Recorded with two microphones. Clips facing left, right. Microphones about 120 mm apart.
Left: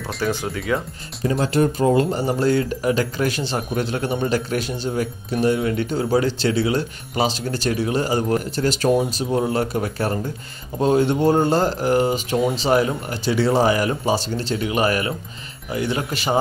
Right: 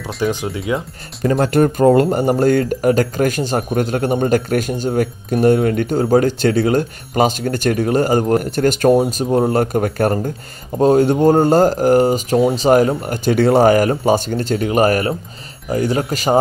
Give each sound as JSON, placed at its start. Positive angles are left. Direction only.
{"t": 0.2, "sound": "speech", "side_deg": -15}
{"t": 1.2, "sound": "speech", "side_deg": -60}
{"t": 8.9, "sound": "speech", "side_deg": -35}